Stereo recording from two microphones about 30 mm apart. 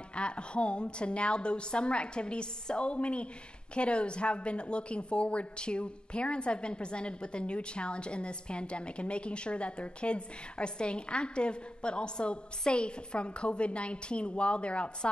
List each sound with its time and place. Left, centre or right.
0.1 s a woman's voice: left